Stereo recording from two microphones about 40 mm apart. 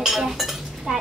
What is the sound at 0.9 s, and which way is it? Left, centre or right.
Speech, right.